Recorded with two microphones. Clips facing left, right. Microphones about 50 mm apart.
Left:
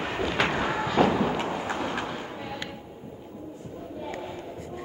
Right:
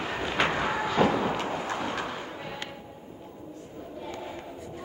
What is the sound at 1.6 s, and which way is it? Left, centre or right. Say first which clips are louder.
Vehicle: left 1 dB; centre.